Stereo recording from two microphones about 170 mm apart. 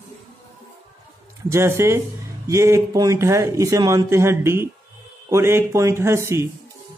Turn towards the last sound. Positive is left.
turn(degrees=-15)  # may be behind; listen again after turning